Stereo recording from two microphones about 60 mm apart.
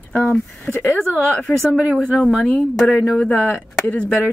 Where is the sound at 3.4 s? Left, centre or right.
Left.